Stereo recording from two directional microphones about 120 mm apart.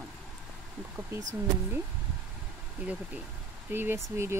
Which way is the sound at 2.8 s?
10° right (ahead or behind).